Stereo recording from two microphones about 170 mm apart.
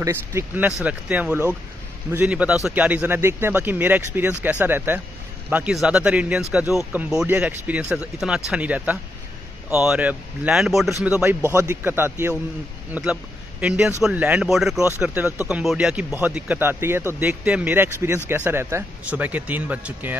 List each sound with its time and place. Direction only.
0.0 s speech: 15° right (ahead or behind)